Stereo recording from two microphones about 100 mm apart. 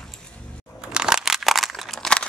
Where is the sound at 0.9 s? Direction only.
5° right (ahead or behind).